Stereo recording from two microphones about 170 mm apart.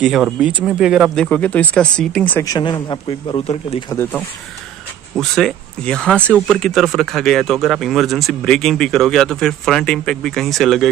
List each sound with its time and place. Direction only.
0.0 s speech: 5° right (ahead or behind)
1.2 s speech: 10° left (ahead or behind)
2.5 s a man's voice: 25° left (ahead or behind)
3.9 s speech: 15° left (ahead or behind)
5.1 s speech: centre (ahead or behind)